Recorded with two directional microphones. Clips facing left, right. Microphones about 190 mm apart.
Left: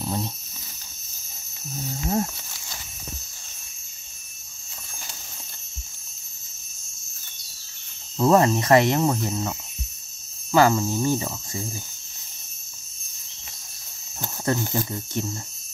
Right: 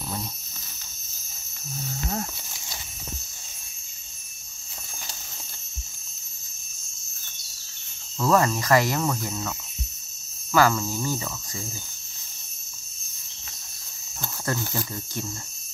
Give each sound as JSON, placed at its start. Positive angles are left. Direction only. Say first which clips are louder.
{"t": 0.0, "sound": "a sound", "louder": "left 5 dB", "side_deg": 30}
{"t": 8.2, "sound": "speech", "louder": "left 4 dB", "side_deg": 25}
{"t": 14.2, "sound": "speech", "louder": "left 4 dB", "side_deg": 20}